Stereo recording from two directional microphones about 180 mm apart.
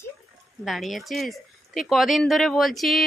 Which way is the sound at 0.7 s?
Centre (ahead or behind).